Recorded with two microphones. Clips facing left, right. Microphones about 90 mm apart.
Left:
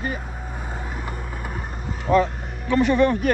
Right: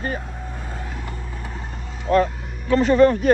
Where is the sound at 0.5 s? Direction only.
15° left (ahead or behind).